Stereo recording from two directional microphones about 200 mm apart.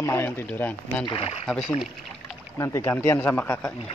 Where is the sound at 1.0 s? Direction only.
30° left (ahead or behind).